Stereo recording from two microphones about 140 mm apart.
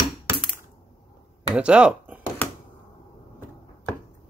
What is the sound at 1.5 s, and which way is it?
Speech, 5° right (ahead or behind).